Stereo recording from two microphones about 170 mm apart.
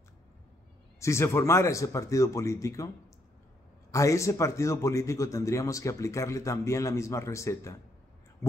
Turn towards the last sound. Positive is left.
turn(degrees=15)  # may be behind; listen again after turning